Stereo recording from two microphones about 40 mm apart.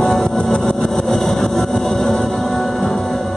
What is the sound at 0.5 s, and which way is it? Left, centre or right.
Vehicle, centre.